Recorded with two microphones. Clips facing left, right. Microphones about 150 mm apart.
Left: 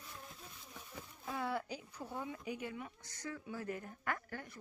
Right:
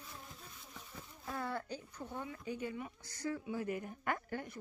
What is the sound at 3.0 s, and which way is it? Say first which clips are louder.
Speech: right 6 dB; 30° right (ahead or behind).